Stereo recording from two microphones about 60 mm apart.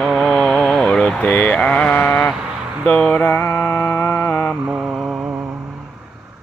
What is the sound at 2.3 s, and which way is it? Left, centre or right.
Vehicle, centre.